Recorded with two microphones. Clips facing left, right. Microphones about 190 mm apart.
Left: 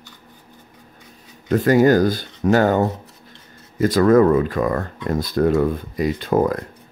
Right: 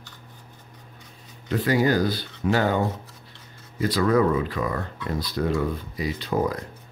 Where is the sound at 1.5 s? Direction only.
45° left (ahead or behind).